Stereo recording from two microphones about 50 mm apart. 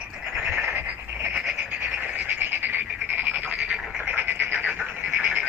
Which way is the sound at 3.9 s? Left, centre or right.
Right.